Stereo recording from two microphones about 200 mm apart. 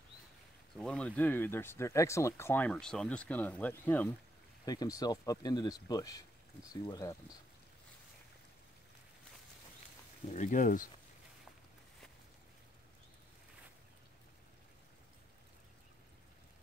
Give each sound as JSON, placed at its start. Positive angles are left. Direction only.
{"t": 0.7, "sound": "speech", "side_deg": 5}
{"t": 4.6, "sound": "speech", "side_deg": 20}
{"t": 10.3, "sound": "speech", "side_deg": 40}